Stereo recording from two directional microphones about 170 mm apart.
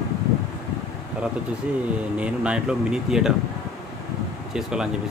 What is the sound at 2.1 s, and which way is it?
Speech, 5° right (ahead or behind).